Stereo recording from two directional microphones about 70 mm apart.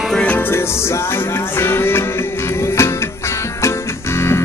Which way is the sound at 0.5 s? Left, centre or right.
Left.